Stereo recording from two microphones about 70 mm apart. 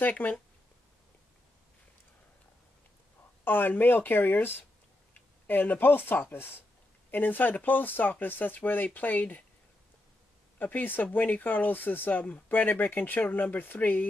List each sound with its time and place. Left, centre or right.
0.0 s speech: left
3.4 s speech: left
10.6 s speech: left